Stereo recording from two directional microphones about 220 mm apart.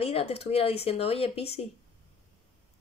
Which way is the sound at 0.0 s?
25° left (ahead or behind).